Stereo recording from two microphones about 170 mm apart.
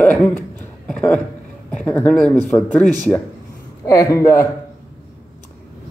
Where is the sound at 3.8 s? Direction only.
20° left (ahead or behind).